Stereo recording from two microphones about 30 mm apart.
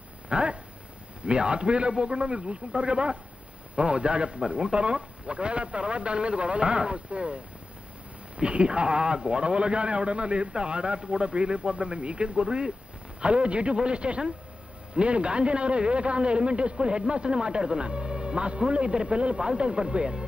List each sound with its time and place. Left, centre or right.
0.3 s a sound: right
1.2 s a man's voice: right
8.4 s a man's voice: right